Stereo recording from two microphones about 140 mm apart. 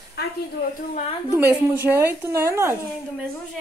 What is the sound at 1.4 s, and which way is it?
Speech, 10° right (ahead or behind).